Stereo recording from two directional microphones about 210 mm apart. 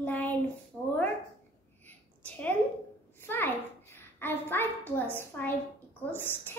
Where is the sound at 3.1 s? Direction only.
10° left (ahead or behind).